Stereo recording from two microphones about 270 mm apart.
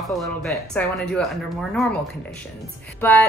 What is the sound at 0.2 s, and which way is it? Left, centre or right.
Speech, centre.